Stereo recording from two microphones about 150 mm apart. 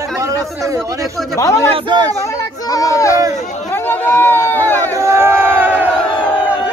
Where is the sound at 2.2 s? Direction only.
20° left (ahead or behind).